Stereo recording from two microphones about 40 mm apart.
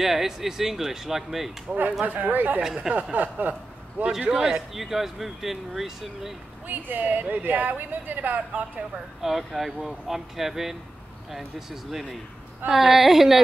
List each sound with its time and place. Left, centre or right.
0.0 s speech: centre
2.0 s a woman's voice: right
4.3 s speech: centre
6.7 s a woman's voice: right
9.2 s speech: centre